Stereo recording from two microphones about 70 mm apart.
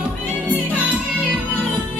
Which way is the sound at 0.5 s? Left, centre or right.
Right.